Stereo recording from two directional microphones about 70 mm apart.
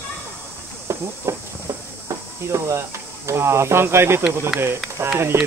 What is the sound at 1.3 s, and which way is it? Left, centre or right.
Speech, right.